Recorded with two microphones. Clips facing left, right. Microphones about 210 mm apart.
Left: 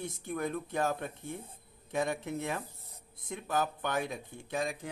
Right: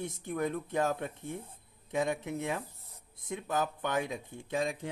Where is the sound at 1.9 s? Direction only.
15° right (ahead or behind).